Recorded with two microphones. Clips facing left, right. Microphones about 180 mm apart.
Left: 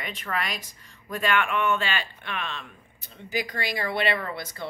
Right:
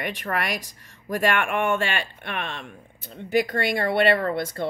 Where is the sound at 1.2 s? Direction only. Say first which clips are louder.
Right 2 dB; 55° right (ahead or behind).